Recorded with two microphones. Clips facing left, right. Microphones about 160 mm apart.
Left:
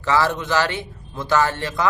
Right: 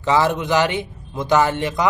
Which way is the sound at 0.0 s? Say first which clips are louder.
Right 2 dB; 20° right (ahead or behind).